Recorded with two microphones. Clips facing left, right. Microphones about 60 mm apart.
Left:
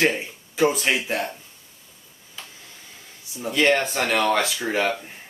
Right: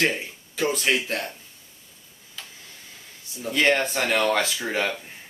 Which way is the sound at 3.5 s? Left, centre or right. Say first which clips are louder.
Left 1 dB; centre.